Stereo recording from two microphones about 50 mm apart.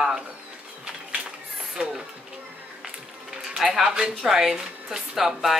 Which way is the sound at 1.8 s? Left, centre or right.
Centre.